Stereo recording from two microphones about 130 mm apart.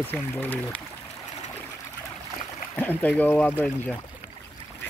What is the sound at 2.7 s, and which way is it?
Speech, 15° left (ahead or behind).